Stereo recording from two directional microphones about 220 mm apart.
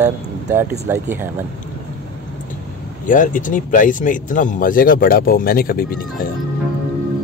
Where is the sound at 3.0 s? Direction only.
35° left (ahead or behind).